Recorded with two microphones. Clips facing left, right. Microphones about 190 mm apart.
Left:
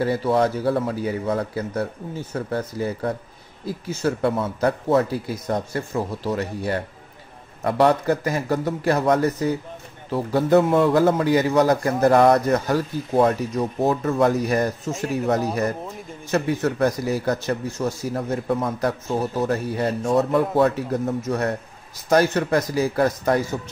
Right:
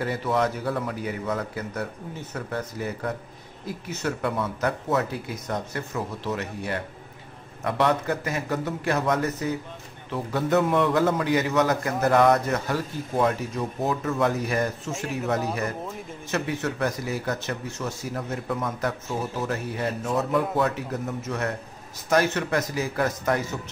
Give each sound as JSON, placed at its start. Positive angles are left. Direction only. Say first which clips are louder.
{"t": 0.0, "sound": "a man's voice", "louder": "left 5 dB", "side_deg": 30}